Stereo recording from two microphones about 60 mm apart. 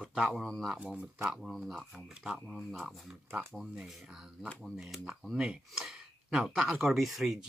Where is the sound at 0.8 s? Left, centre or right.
Right.